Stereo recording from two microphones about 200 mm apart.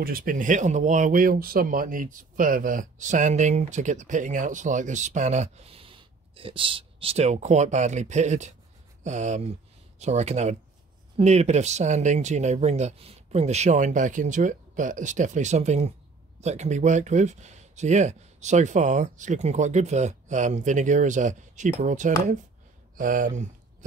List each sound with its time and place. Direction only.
0.0 s speech: 45° right (ahead or behind)